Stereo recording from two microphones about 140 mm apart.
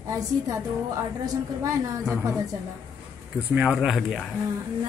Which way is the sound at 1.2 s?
25° right (ahead or behind).